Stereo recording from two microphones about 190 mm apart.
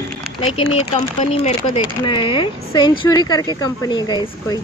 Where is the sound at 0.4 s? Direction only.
30° left (ahead or behind).